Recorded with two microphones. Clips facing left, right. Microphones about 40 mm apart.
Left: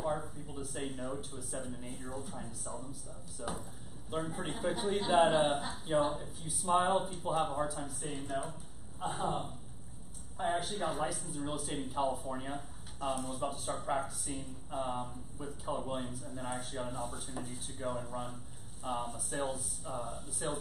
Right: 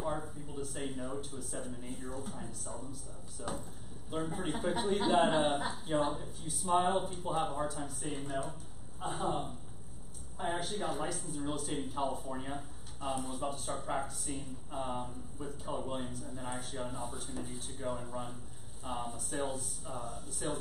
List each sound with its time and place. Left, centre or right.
0.0 s speech: centre